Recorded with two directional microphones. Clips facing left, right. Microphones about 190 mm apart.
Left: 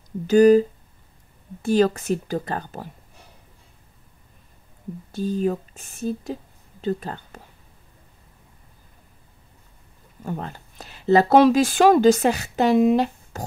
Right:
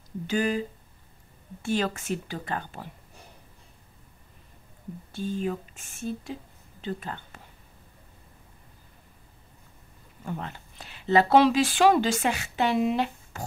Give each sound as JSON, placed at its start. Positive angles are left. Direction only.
{"t": 0.3, "sound": "speech", "side_deg": 40}
{"t": 5.1, "sound": "speech", "side_deg": 40}
{"t": 10.2, "sound": "speech", "side_deg": 40}